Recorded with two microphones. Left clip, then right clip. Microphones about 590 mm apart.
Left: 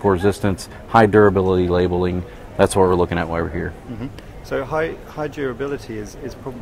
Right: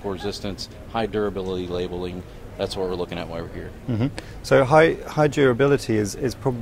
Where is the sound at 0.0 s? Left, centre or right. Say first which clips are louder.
Left 11 dB; left.